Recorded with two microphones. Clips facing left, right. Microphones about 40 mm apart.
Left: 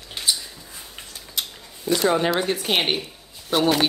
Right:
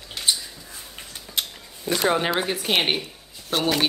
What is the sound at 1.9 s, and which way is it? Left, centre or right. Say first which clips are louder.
Speech: left 3 dB; right.